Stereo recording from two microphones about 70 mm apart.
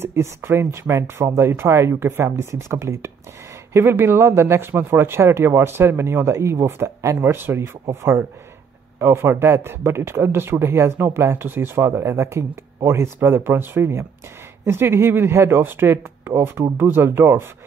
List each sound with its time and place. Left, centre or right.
0.0 s speech: right
7.3 s speech: right